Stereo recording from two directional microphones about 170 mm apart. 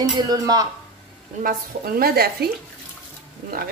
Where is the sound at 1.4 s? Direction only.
60° right (ahead or behind).